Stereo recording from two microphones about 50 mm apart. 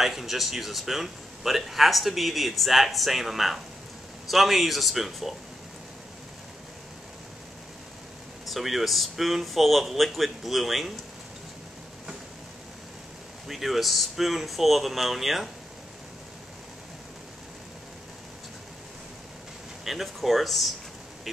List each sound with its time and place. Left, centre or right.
0.0 s a man's voice: centre
8.5 s a man's voice: centre
13.5 s a man's voice: centre
19.8 s a man's voice: centre